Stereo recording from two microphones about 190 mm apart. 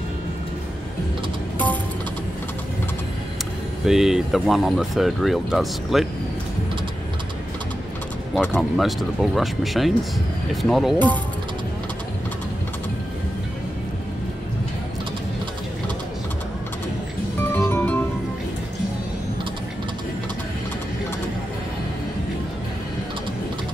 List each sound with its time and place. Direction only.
3.8 s speech: centre (ahead or behind)
8.5 s speech: centre (ahead or behind)
17.4 s music: 10° left (ahead or behind)